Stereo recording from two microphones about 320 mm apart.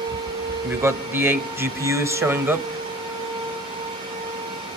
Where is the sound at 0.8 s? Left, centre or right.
Centre.